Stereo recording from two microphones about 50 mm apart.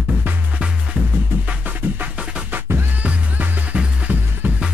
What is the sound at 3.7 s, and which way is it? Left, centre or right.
Music, right.